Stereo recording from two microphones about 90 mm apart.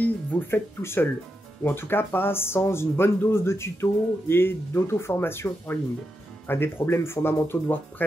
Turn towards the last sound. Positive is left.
turn(degrees=25)  # may be behind; listen again after turning